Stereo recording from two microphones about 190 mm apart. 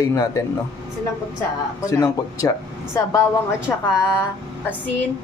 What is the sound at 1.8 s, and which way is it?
Speech, 15° left (ahead or behind).